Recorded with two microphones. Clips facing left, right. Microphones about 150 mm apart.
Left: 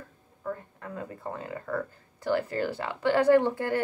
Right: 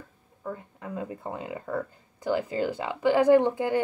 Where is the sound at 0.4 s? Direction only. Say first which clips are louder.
Left 1 dB; 10° right (ahead or behind).